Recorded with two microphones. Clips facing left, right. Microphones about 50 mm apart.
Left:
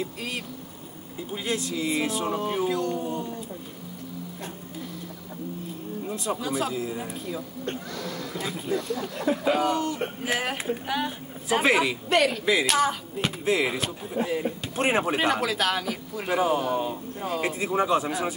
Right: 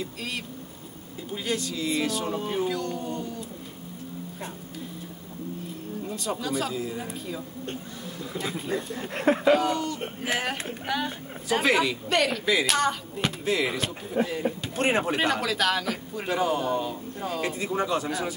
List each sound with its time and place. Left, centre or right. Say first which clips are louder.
1.3 s speech: left 1 dB; centre
6.0 s speech: left 1 dB; centre
9.0 s speech: right 2 dB; right
9.5 s speech: left 1 dB; centre
14.2 s speech: right 2 dB; right
14.8 s speech: left 1 dB; centre